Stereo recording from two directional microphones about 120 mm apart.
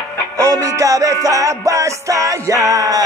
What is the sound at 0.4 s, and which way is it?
Music, 25° right (ahead or behind).